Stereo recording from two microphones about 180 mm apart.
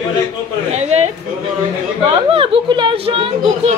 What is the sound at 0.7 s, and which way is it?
Speech, 40° right (ahead or behind).